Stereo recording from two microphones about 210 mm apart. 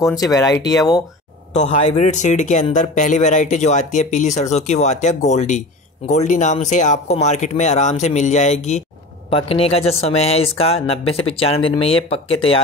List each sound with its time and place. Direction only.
0.0 s speech: 15° left (ahead or behind)
1.5 s speech: 35° left (ahead or behind)